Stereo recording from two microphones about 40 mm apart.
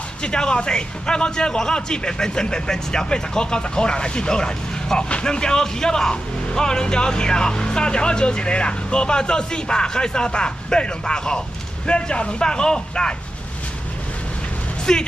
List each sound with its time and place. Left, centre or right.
0.2 s a man's voice: left
14.9 s speech: centre